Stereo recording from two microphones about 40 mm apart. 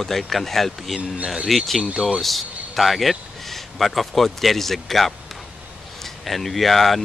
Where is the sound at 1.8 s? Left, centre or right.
Right.